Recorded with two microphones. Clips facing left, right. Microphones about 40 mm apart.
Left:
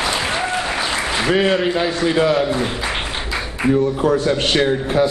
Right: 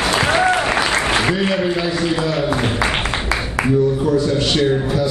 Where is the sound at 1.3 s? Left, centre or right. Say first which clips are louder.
Left 2 dB; left.